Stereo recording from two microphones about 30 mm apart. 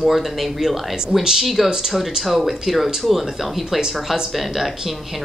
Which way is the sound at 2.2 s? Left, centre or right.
Centre.